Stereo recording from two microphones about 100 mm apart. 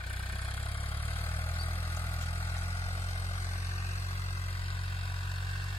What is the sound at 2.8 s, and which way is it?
Vehicle, 90° left.